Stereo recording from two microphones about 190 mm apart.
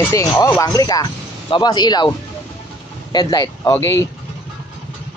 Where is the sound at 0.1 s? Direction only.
15° left (ahead or behind).